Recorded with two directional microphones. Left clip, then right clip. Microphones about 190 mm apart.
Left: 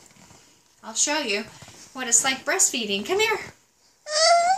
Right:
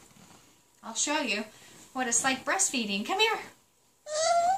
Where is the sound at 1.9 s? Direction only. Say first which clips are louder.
Left 5 dB; 15° right (ahead or behind).